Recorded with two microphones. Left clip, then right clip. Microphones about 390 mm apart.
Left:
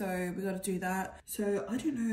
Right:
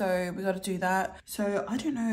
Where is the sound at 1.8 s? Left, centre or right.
Centre.